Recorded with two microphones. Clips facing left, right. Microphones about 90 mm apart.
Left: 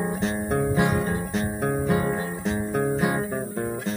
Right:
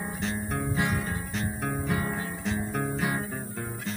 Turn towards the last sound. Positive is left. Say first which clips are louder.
# left 6 dB
turn(degrees=15)  # may be behind; listen again after turning